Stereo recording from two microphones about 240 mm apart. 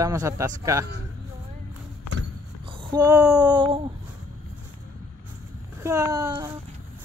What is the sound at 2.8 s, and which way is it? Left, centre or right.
Speech, centre.